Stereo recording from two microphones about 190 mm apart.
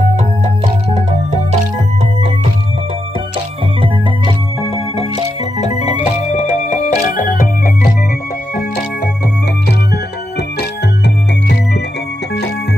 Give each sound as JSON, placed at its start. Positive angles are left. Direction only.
{"t": 5.9, "sound": "organ", "side_deg": 40}
{"t": 8.5, "sound": "music", "side_deg": 55}